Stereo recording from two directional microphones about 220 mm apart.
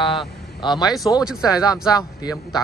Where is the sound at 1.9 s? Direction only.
15° left (ahead or behind).